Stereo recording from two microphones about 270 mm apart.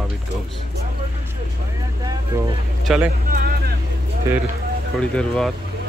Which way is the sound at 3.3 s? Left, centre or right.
Right.